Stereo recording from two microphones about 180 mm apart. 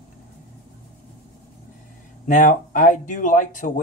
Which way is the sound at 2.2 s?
45° left (ahead or behind).